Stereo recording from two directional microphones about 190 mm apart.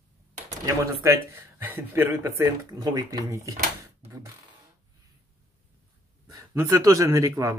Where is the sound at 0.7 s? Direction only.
15° right (ahead or behind).